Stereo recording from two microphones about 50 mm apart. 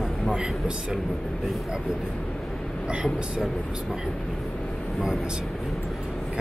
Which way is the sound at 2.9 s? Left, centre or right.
Right.